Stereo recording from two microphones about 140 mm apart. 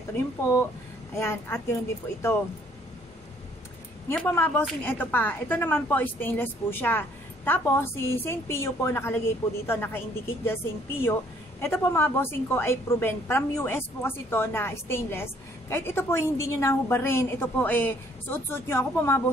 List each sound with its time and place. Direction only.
0.4 s a woman's voice: 20° left (ahead or behind)
4.1 s a woman's voice: 10° left (ahead or behind)